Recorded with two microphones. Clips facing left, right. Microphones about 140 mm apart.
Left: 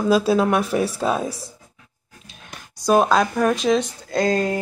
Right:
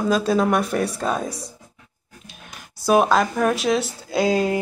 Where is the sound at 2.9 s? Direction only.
Centre (ahead or behind).